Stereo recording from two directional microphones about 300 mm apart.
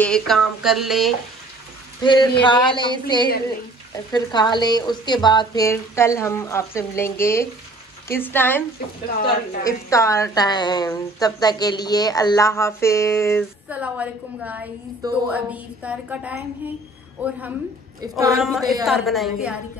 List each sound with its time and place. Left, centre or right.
0.0 s a woman's voice: centre
2.0 s a woman's voice: centre
3.9 s a woman's voice: centre
9.2 s a woman's voice: left
9.7 s a woman's voice: centre
13.7 s a woman's voice: centre